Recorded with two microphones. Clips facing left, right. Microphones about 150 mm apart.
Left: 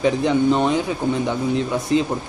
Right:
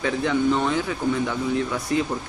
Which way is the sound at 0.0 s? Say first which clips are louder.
Left 4 dB; 20° left (ahead or behind).